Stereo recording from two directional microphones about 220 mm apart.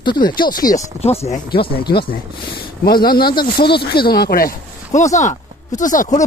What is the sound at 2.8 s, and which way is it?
Speech, 45° left (ahead or behind).